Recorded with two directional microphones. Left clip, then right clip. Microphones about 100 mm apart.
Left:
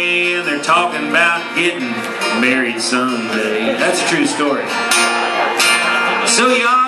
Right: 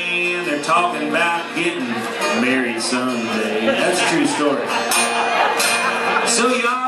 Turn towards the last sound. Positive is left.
turn(degrees=15)  # may be behind; listen again after turning